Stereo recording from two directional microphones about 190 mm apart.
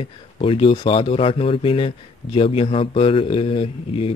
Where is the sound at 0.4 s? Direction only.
30° left (ahead or behind).